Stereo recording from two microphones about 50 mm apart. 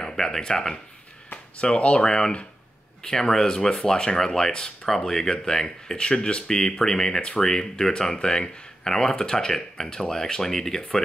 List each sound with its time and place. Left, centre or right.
0.0 s speech: centre